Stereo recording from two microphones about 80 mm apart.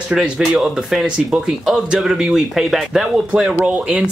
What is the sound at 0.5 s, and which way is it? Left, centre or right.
Speech, centre.